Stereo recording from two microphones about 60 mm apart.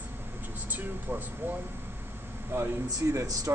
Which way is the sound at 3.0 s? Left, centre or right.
Right.